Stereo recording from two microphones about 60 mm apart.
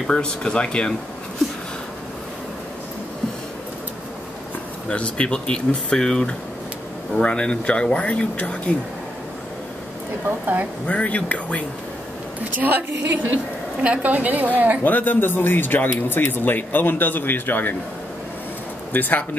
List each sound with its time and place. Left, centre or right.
0.0 s speech: centre
4.8 s speech: centre
10.4 s a woman's voice: right
10.9 s speech: left
12.4 s a woman's voice: right
14.8 s a man's voice: left
18.9 s a man's voice: left